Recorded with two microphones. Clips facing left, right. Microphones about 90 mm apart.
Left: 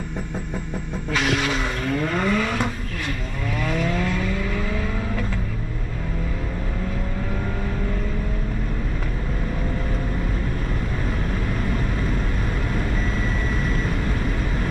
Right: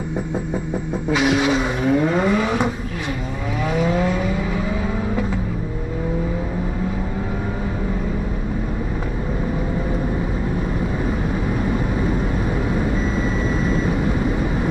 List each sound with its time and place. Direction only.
1.1 s vehicle: 15° right (ahead or behind)
3.7 s vehicle: 15° right (ahead or behind)
11.6 s vehicle: 15° right (ahead or behind)